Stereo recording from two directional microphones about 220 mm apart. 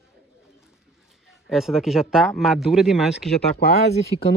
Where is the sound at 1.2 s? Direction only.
Centre (ahead or behind).